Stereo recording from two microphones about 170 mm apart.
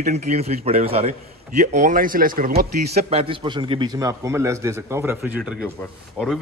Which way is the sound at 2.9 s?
35° right (ahead or behind).